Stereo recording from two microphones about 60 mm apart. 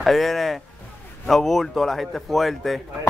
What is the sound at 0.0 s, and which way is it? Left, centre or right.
Speech, centre.